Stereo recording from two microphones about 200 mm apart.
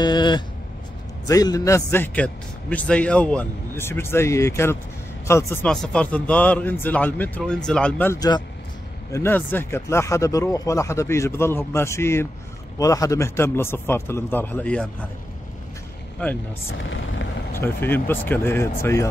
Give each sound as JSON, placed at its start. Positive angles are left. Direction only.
{"t": 0.0, "sound": "vehicle", "side_deg": 20}
{"t": 1.2, "sound": "a man's voice", "side_deg": 20}
{"t": 17.6, "sound": "a man's voice", "side_deg": 10}